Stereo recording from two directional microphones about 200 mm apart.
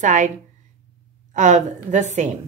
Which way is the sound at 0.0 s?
40° right (ahead or behind).